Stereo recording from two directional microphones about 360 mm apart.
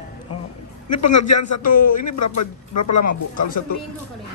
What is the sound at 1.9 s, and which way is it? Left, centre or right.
Speech, left.